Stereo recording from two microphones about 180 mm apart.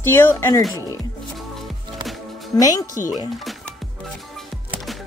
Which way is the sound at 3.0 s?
15° right (ahead or behind).